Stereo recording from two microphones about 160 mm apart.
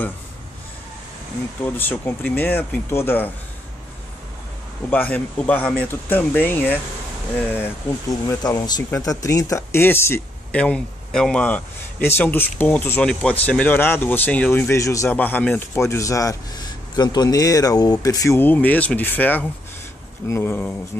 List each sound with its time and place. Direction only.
1.6 s speech: 10° left (ahead or behind)
4.8 s speech: 10° left (ahead or behind)
8.3 s speech: 25° left (ahead or behind)